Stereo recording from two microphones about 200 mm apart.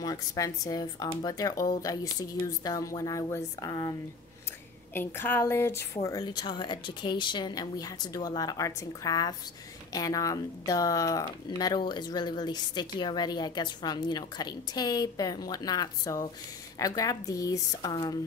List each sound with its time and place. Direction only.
0.0 s speech: 20° left (ahead or behind)
4.9 s speech: 10° left (ahead or behind)